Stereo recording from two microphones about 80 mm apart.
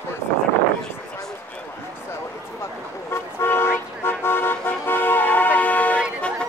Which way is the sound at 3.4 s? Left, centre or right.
Left.